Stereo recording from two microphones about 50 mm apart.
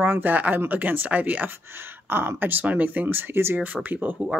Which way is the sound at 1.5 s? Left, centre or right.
Right.